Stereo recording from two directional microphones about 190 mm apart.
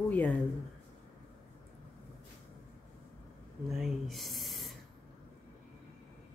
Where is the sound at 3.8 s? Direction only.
Centre (ahead or behind).